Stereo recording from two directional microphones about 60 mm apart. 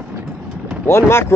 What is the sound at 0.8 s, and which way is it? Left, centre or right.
Speech, left.